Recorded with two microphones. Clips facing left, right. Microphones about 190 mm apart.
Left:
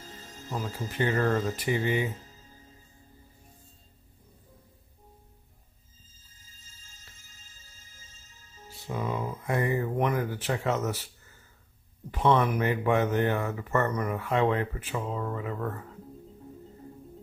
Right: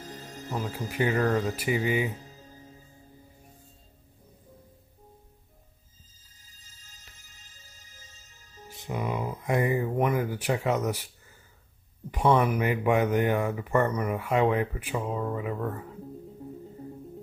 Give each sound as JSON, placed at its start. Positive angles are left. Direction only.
{"t": 0.0, "sound": "music", "side_deg": -60}
{"t": 0.5, "sound": "speech", "side_deg": -10}
{"t": 8.6, "sound": "speech", "side_deg": -20}
{"t": 12.1, "sound": "speech", "side_deg": -10}